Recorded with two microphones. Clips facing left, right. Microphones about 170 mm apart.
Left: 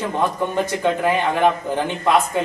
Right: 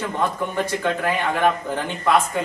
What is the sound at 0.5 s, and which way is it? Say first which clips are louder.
A man's voice: left 3 dB; 15° left (ahead or behind).